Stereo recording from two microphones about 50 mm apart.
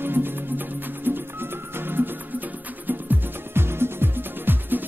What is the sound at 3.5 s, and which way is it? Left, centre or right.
Music, right.